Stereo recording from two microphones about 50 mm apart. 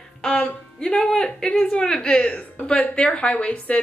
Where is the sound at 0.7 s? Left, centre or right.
Centre.